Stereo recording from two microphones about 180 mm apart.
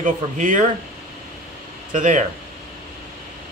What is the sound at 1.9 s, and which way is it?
Speech, 45° right (ahead or behind).